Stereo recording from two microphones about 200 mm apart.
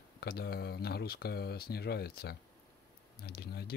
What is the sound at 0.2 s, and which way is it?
Speech, 50° left (ahead or behind).